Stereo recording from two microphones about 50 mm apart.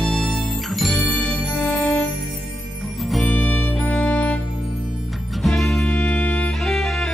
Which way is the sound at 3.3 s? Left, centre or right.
Left.